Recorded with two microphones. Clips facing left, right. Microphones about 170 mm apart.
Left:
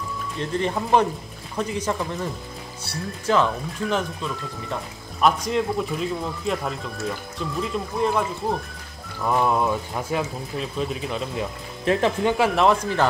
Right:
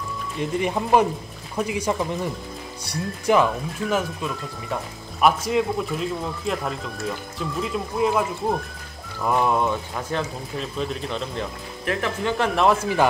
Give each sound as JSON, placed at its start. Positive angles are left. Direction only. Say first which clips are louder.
{"t": 0.4, "sound": "speech", "louder": "right 1 dB", "side_deg": -10}
{"t": 11.8, "sound": "speech", "louder": "left 5 dB", "side_deg": 25}
{"t": 12.4, "sound": "speech", "louder": "right 2 dB", "side_deg": 0}